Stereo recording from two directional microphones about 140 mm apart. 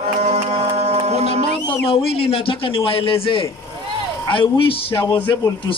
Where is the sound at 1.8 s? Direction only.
45° left (ahead or behind).